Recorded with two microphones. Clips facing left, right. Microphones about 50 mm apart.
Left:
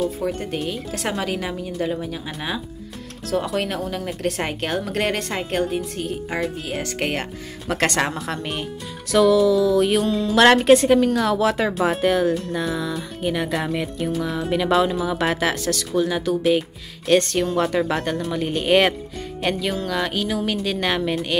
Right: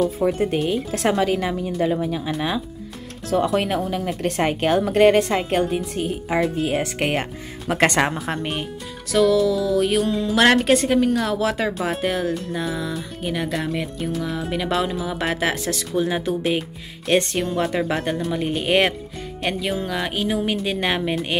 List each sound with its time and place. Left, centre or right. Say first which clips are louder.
0.3 s speech: right 5 dB; centre
9.1 s speech: left 2 dB; centre
16.0 s speech: left 1 dB; right